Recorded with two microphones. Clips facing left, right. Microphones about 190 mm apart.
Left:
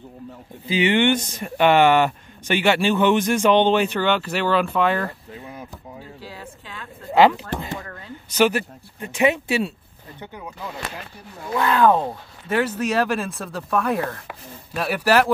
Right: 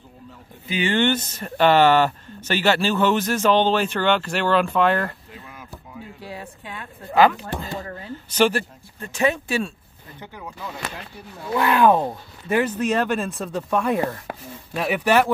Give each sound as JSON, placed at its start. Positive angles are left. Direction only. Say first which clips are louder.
{"t": 0.7, "sound": "speech", "louder": "left 2 dB", "side_deg": 15}
{"t": 5.4, "sound": "a sound", "louder": "left 8 dB", "side_deg": 35}
{"t": 6.2, "sound": "a sound", "louder": "right 3 dB", "side_deg": -20}
{"t": 7.1, "sound": "speech", "louder": "left 1 dB", "side_deg": 25}
{"t": 8.3, "sound": "speech", "louder": "left 1 dB", "side_deg": 10}
{"t": 9.1, "sound": "speech", "louder": "left 2 dB", "side_deg": 20}
{"t": 11.5, "sound": "speech", "louder": "even", "side_deg": -15}
{"t": 12.0, "sound": "speech", "louder": "right 1 dB", "side_deg": 5}